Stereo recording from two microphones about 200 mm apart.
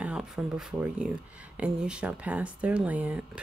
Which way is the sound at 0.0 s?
5° right (ahead or behind).